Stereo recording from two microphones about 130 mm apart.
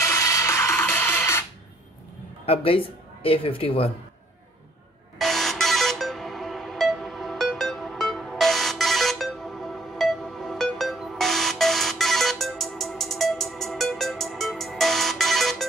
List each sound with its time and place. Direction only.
0.0 s music: 20° left (ahead or behind)
2.4 s a man's voice: 45° left (ahead or behind)
5.2 s music: centre (ahead or behind)